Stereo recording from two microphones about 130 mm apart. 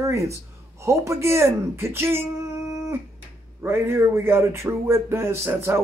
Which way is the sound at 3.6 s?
20° right (ahead or behind).